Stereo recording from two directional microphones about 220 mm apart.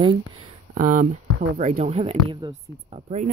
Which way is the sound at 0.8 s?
40° right (ahead or behind).